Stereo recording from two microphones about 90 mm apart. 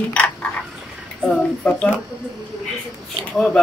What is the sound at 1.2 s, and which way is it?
Speech, 10° left (ahead or behind).